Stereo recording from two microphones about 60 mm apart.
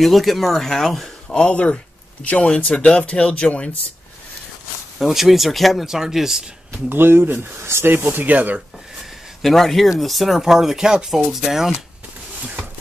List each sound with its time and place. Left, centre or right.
0.0 s speech: centre
1.3 s speech: left
4.9 s speech: centre
6.9 s speech: right
9.4 s speech: centre
12.4 s a sound: right